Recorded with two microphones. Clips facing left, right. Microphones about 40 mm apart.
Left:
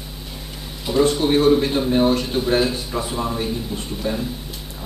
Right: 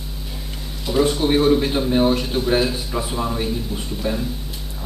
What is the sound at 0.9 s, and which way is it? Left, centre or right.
Speech, centre.